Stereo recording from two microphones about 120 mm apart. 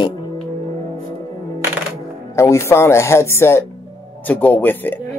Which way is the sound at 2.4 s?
20° left (ahead or behind).